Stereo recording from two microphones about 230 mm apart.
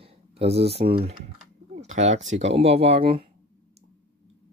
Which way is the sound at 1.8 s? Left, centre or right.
Right.